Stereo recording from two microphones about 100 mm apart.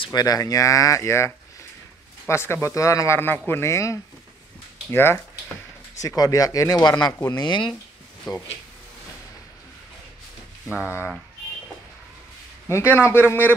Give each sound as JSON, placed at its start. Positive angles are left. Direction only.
{"t": 0.0, "sound": "a man's voice", "side_deg": 40}
{"t": 3.2, "sound": "a man's voice", "side_deg": 20}
{"t": 5.9, "sound": "speech", "side_deg": 35}
{"t": 10.7, "sound": "speech", "side_deg": -10}
{"t": 12.6, "sound": "a man's voice", "side_deg": 25}